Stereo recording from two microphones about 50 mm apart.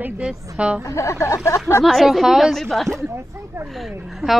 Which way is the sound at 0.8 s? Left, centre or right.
Left.